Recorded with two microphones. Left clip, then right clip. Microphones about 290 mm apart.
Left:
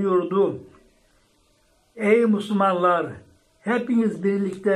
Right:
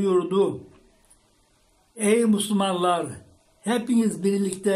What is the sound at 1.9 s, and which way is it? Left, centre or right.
Speech, right.